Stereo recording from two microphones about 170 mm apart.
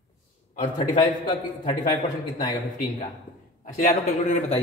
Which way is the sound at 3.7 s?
50° left (ahead or behind).